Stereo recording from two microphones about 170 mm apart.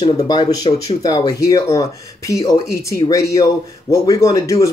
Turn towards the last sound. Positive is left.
turn(degrees=20)  # may be behind; listen again after turning